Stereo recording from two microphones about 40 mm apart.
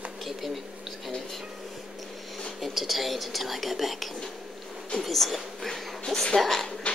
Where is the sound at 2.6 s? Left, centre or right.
Centre.